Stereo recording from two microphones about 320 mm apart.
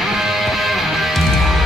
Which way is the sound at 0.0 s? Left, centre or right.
Centre.